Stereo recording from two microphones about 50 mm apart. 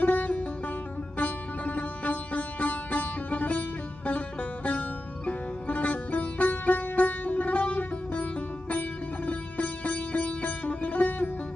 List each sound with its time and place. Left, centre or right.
0.0 s music: left
1.1 s sitar: left